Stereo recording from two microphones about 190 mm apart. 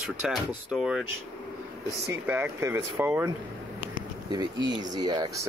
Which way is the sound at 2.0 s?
10° right (ahead or behind).